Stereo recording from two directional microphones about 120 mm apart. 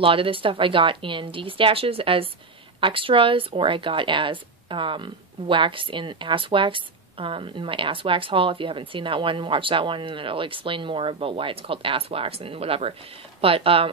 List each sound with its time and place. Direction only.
0.0 s speech: 50° right (ahead or behind)